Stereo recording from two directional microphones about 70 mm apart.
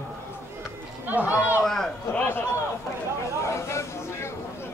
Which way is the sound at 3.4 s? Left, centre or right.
Left.